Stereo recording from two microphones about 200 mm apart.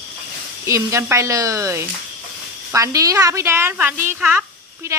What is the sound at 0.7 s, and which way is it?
A woman's voice, 15° right (ahead or behind).